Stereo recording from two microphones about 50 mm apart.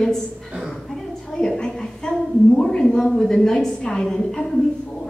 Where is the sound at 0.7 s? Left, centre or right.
Centre.